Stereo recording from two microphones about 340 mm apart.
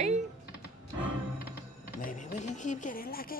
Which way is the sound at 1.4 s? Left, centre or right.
Left.